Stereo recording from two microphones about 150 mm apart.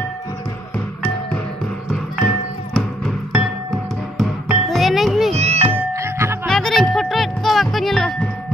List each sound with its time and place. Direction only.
1.9 s music: centre (ahead or behind)
5.3 s music: 45° right (ahead or behind)
5.9 s music: 15° right (ahead or behind)
6.4 s music: 5° left (ahead or behind)